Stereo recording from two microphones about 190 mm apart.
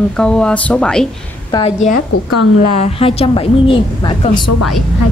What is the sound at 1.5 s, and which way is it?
A woman's voice, 30° left (ahead or behind).